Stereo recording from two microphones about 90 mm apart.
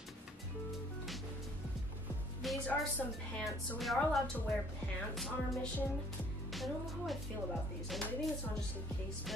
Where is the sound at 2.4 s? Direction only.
Centre (ahead or behind).